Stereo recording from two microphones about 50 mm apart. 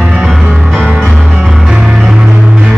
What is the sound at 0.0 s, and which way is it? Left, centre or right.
Music, centre.